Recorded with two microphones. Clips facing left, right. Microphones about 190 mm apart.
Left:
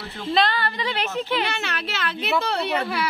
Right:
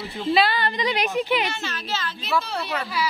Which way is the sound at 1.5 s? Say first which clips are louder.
Even; 65° left (ahead or behind).